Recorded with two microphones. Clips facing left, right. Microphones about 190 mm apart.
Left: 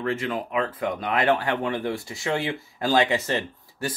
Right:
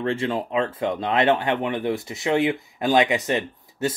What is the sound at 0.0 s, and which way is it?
Speech, 30° right (ahead or behind).